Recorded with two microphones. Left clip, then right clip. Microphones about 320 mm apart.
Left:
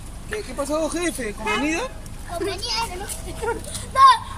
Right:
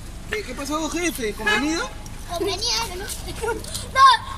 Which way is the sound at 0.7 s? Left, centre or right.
Left.